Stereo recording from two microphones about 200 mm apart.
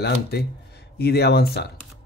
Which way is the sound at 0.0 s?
55° left (ahead or behind).